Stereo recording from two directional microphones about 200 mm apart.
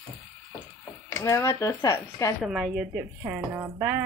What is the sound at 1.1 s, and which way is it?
Speech, 15° left (ahead or behind).